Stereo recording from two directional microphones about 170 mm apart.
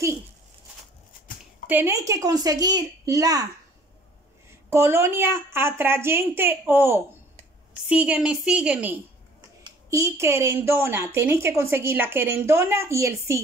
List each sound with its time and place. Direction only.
1.7 s a child's voice: 15° right (ahead or behind)
4.6 s a woman's voice: 15° right (ahead or behind)
9.6 s a woman's voice: 20° right (ahead or behind)